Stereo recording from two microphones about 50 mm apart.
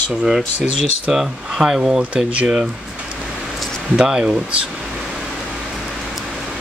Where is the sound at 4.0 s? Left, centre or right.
Centre.